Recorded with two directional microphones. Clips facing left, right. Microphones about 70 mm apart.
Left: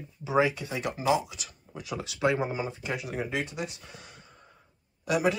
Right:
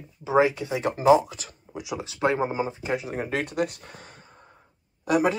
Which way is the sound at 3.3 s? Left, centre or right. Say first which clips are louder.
Right 6 dB; right.